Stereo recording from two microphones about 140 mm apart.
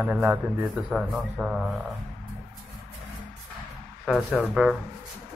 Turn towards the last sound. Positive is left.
turn(degrees=0)  # may be behind; listen again after turning